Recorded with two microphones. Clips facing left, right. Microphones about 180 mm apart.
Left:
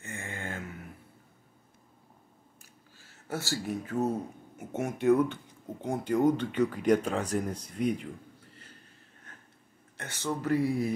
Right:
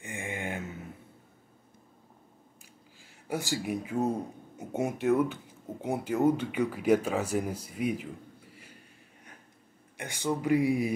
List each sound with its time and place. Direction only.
0.0 s a sound: 15° right (ahead or behind)
3.0 s speech: 15° right (ahead or behind)
9.9 s speech: 15° right (ahead or behind)